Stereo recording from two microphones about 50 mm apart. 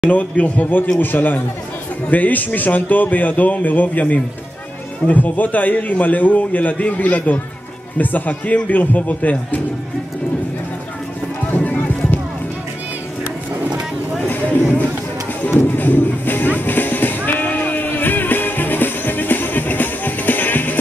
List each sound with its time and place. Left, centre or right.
0.1 s a man's voice: left
11.5 s music: left
15.4 s music: left